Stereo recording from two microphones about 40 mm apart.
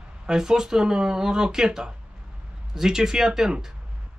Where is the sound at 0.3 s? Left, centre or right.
Centre.